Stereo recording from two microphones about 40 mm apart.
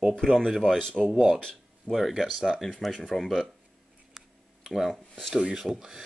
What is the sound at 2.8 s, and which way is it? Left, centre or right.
Speech, centre.